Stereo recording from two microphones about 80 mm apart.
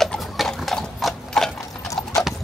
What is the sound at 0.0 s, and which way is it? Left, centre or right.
Sewing machine, centre.